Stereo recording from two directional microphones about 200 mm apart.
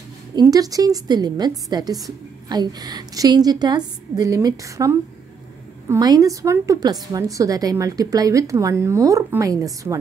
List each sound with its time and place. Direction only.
0.4 s a woman's voice: 20° right (ahead or behind)